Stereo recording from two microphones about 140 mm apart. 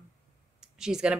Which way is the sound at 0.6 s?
5° right (ahead or behind).